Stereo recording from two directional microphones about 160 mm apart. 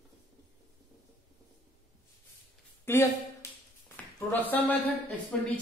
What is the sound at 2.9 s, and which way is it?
Speech, 15° left (ahead or behind).